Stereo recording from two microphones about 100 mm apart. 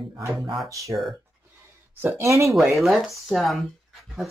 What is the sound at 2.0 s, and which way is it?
Speech, 25° right (ahead or behind).